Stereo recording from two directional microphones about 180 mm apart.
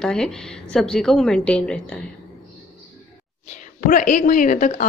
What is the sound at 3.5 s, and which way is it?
Speech, 50° left (ahead or behind).